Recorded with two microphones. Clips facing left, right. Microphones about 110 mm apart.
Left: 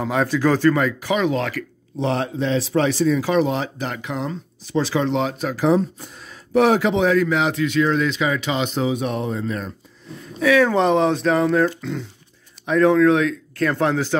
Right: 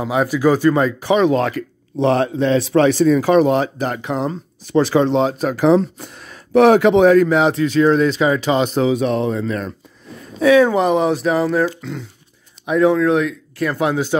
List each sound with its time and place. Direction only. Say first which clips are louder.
0.0 s speech: right 3 dB; 10° right (ahead or behind)
0.7 s speech: right 5 dB; 30° right (ahead or behind)
2.0 s speech: right 6 dB; 60° right (ahead or behind); by 4.4 s 35° right (ahead or behind)
4.6 s speech: right 6 dB; 55° right (ahead or behind)
5.0 s speech: right 5 dB; 35° right (ahead or behind)
5.5 s speech: right 3 dB; 65° right (ahead or behind); by 8.8 s 40° right (ahead or behind)
8.8 s speech: right 6 dB; 90° right
10.4 s speech: right 4 dB; 25° right (ahead or behind)
10.7 s speech: right 1 dB; 5° right (ahead or behind)